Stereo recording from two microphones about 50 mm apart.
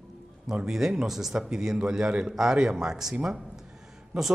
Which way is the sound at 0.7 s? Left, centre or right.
Centre.